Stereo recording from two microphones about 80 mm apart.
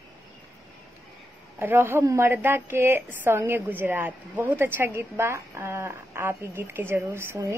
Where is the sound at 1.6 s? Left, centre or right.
Right.